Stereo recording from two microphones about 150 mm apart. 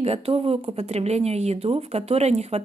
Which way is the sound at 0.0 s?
40° right (ahead or behind).